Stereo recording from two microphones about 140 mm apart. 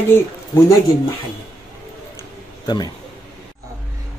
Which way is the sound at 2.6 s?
30° left (ahead or behind).